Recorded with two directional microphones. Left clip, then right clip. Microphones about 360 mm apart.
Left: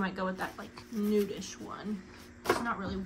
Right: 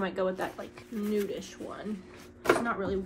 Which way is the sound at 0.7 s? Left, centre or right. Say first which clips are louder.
Left 1 dB; centre.